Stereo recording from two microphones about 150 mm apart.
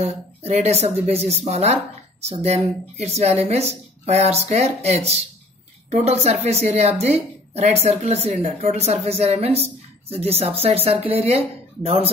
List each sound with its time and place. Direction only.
0.0 s a woman's voice: 45° right (ahead or behind)